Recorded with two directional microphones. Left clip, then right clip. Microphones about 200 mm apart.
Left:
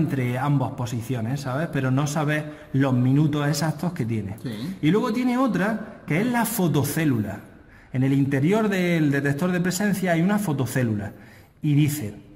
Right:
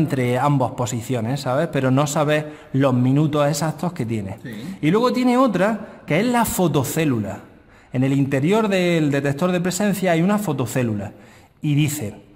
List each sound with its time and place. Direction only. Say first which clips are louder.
0.1 s a man's voice: right 7 dB; 30° right (ahead or behind)